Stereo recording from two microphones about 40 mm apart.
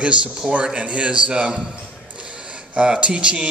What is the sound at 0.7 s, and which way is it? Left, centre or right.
Speech, right.